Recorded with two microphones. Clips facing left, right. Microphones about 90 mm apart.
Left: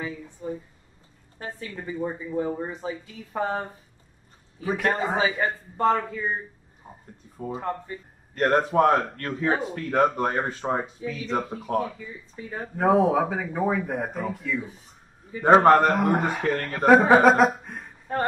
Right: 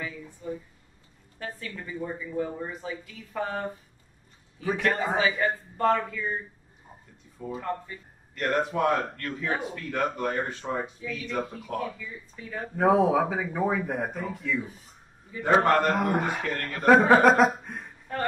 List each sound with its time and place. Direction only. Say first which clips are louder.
0.0 s a sound: left 3 dB; 30° left (ahead or behind)
1.8 s speech: left 5 dB; 25° left (ahead or behind)
4.9 s speech: left 1 dB; centre (ahead or behind)
5.4 s speech: left 2 dB; 30° left (ahead or behind)
7.3 s speech: left 3 dB; 40° left (ahead or behind)
7.6 s speech: left 1 dB; 25° left (ahead or behind)
8.4 s speech: left 6 dB; 40° left (ahead or behind)
12.7 s speech: left 1 dB; centre (ahead or behind)
15.4 s speech: left 6 dB; 40° left (ahead or behind)
15.9 s speech: left 3 dB; centre (ahead or behind)